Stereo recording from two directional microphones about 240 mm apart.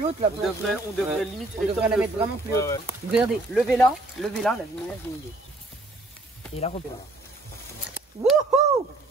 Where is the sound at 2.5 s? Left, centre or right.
Centre.